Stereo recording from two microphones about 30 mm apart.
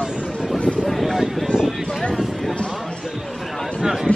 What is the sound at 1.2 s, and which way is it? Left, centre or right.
Speech, centre.